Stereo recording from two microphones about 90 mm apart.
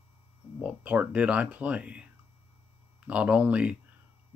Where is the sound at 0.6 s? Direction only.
15° right (ahead or behind).